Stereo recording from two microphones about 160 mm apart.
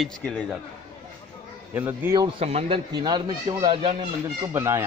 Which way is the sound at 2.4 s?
40° right (ahead or behind).